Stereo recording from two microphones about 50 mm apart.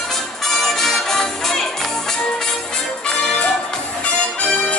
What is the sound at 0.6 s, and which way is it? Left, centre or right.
Music, centre.